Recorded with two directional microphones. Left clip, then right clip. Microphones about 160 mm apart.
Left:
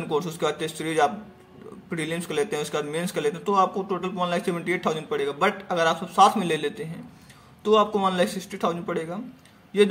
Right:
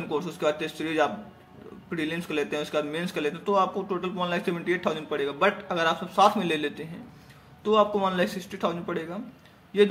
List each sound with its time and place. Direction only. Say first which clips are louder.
0.0 s a man's voice: left 2 dB; 20° left (ahead or behind)